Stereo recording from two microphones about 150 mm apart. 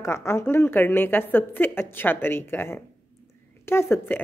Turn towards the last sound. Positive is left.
turn(degrees=15)  # may be behind; listen again after turning